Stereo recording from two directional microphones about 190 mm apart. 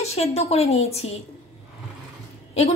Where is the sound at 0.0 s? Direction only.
35° left (ahead or behind).